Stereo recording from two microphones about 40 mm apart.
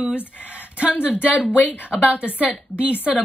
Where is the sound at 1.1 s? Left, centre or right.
Left.